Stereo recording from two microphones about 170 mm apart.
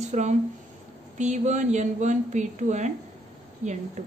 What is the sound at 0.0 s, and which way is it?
A woman's voice, 45° right (ahead or behind).